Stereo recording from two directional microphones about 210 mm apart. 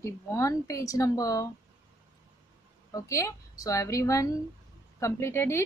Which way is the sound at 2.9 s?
15° left (ahead or behind).